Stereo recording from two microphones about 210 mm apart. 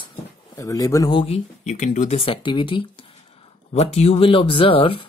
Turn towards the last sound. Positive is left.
turn(degrees=25)  # may be behind; listen again after turning